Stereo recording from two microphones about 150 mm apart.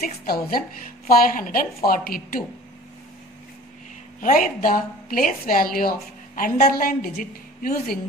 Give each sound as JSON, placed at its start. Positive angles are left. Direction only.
{"t": 0.0, "sound": "a woman's voice", "side_deg": 85}
{"t": 1.0, "sound": "a woman's voice", "side_deg": 70}
{"t": 4.2, "sound": "a woman's voice", "side_deg": 65}